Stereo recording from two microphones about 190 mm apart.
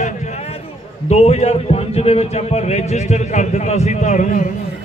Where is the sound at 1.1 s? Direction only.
35° left (ahead or behind).